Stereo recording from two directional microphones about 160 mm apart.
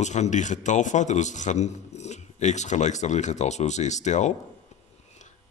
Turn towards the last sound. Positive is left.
turn(degrees=50)  # may be behind; listen again after turning